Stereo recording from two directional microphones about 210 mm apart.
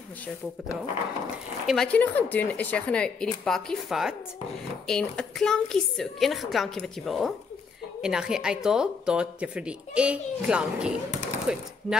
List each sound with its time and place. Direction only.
1.7 s speech: 5° left (ahead or behind)